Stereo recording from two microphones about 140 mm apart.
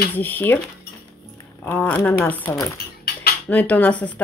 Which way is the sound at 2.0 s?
15° left (ahead or behind).